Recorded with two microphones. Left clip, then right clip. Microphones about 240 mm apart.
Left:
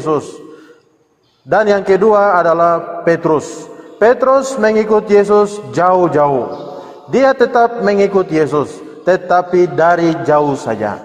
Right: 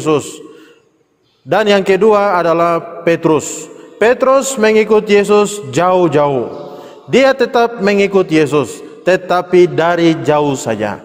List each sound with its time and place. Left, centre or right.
0.0 s a man's voice: right
1.5 s a man's voice: right